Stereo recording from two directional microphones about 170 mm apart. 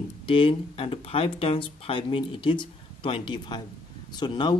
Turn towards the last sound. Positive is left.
turn(degrees=25)  # may be behind; listen again after turning